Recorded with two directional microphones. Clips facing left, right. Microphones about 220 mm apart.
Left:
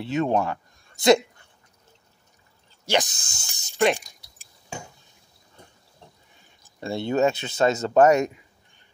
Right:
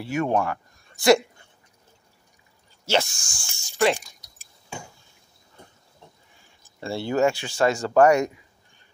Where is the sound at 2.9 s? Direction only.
20° left (ahead or behind).